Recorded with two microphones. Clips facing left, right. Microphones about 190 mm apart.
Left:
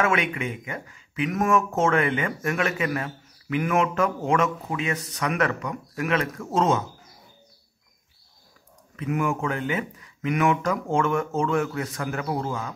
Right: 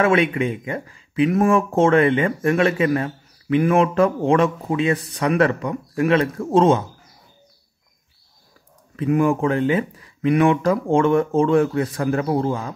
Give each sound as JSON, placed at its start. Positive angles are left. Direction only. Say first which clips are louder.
{"t": 0.0, "sound": "speech", "louder": "right 7 dB", "side_deg": -30}
{"t": 8.9, "sound": "speech", "louder": "right 8 dB", "side_deg": -30}